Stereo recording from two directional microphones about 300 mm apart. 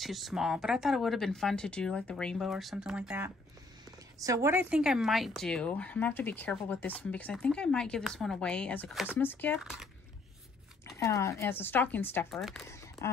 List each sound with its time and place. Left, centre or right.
0.0 s a woman's voice: centre
11.0 s speech: centre